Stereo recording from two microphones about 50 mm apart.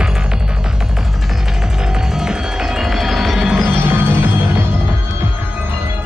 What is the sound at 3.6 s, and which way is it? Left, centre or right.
Music, right.